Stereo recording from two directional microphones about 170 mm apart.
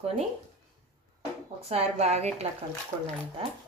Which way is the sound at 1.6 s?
40° right (ahead or behind).